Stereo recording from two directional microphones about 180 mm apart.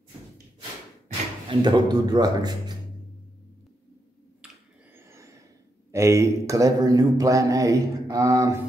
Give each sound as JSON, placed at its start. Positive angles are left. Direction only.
{"t": 1.5, "sound": "a man's voice", "side_deg": -25}
{"t": 4.9, "sound": "a sound", "side_deg": -15}
{"t": 5.9, "sound": "a man's voice", "side_deg": -15}